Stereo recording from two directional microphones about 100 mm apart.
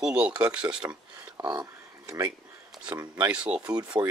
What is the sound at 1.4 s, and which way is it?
Speech, 45° right (ahead or behind).